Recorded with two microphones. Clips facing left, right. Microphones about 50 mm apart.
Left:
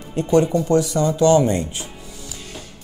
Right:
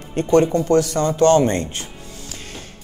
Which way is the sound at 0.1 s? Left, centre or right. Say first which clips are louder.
Right 1 dB; right.